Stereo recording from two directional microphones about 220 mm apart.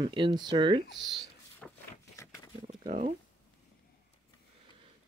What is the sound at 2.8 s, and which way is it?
Speech, 30° right (ahead or behind).